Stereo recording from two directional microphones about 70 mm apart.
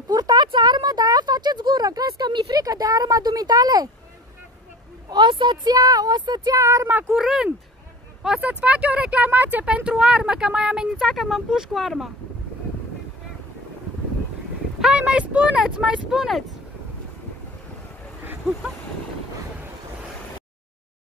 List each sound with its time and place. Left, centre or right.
0.1 s speech: right
5.1 s speech: right
5.8 s speech: right
6.5 s speech: right
6.9 s speech: right
7.2 s speech: centre
8.4 s speech: right; by 12.1 s centre
14.8 s speech: centre